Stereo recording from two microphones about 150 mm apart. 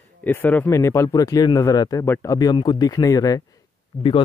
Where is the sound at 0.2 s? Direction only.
10° left (ahead or behind).